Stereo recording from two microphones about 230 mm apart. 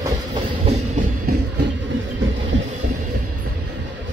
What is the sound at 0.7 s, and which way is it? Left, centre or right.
Train, right.